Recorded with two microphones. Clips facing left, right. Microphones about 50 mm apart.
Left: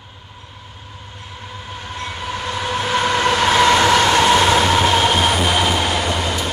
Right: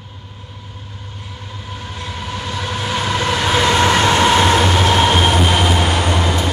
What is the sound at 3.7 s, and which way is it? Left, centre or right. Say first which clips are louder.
Train: even; centre.